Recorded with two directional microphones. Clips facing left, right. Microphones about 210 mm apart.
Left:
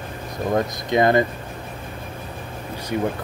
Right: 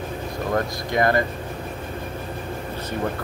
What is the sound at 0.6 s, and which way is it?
Speech, 20° left (ahead or behind).